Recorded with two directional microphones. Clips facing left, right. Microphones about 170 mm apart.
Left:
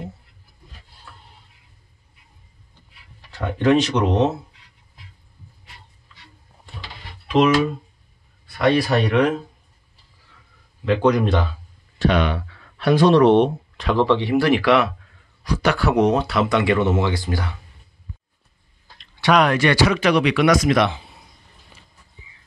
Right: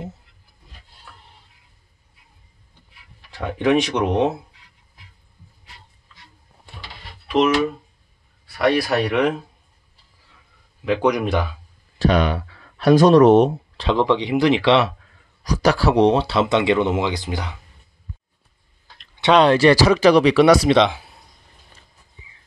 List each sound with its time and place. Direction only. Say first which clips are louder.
3.3 s speech: left 1 dB; 15° right (ahead or behind)
8.5 s speech: left 1 dB; 5° right (ahead or behind)
10.9 s speech: left 1 dB; 10° right (ahead or behind)
12.0 s speech: right 1 dB; 40° right (ahead or behind)
13.9 s speech: left 1 dB; 15° right (ahead or behind)
15.4 s speech: right 2 dB; 40° right (ahead or behind); by 17.6 s 20° right (ahead or behind)
19.2 s speech: right 4 dB; 30° right (ahead or behind)